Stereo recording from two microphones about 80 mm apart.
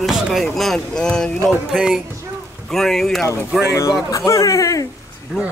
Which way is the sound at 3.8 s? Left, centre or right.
Left.